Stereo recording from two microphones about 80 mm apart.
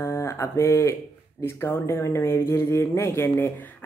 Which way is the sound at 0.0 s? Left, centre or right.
Left.